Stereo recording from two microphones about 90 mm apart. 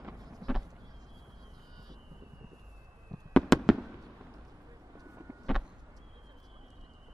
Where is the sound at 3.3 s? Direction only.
Centre (ahead or behind).